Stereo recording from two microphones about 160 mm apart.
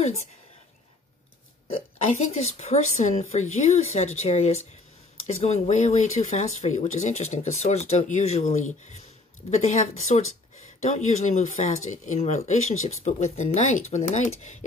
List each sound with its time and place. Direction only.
2.0 s speech: 45° left (ahead or behind)